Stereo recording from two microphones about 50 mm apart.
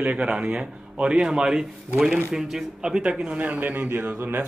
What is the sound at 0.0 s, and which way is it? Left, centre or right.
A man's voice, right.